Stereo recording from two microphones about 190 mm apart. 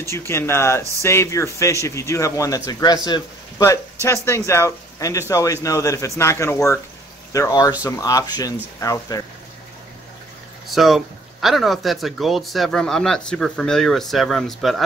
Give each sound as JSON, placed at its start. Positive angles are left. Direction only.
{"t": 0.3, "sound": "speech", "side_deg": 15}
{"t": 10.7, "sound": "speech", "side_deg": 0}